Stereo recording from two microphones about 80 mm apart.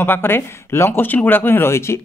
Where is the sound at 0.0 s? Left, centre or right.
Left.